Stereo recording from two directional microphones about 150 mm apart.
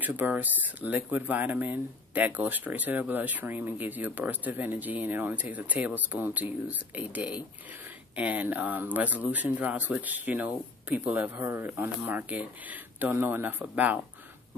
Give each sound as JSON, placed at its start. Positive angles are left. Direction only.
{"t": 0.0, "sound": "speech", "side_deg": -10}